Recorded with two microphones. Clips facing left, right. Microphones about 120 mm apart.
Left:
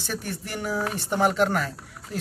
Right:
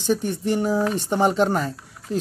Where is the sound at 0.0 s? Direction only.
20° right (ahead or behind).